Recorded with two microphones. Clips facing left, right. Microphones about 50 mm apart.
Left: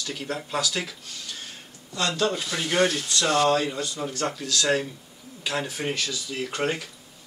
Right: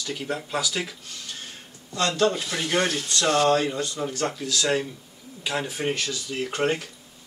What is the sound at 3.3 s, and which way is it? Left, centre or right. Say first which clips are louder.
Speech: right 1 dB; right.